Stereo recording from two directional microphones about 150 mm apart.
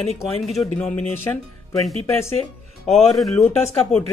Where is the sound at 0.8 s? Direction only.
10° left (ahead or behind).